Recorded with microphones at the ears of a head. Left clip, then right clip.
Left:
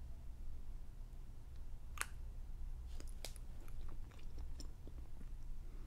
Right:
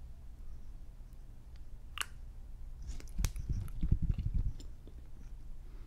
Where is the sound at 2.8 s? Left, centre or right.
Right.